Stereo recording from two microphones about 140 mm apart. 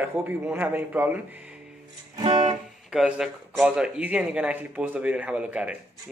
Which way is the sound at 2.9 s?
5° right (ahead or behind).